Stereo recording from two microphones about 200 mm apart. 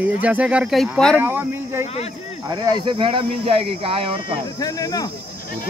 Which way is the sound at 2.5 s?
20° right (ahead or behind).